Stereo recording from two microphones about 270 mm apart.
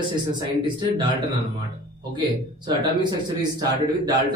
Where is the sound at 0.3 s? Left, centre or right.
Centre.